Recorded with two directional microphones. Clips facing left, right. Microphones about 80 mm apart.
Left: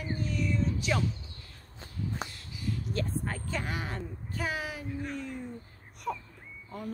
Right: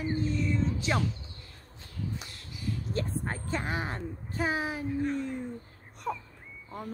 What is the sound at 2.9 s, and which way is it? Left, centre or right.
A woman's voice, right.